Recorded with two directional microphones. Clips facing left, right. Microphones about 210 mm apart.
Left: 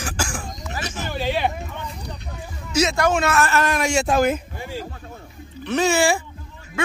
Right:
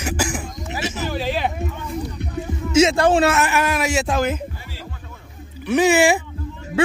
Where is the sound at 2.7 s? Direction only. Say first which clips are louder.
Right 5 dB; 30° right (ahead or behind).